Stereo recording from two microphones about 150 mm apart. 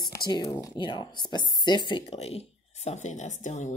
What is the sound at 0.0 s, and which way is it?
Speech, 30° left (ahead or behind).